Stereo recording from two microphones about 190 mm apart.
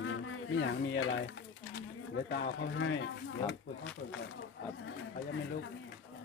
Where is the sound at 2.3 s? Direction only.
70° left (ahead or behind).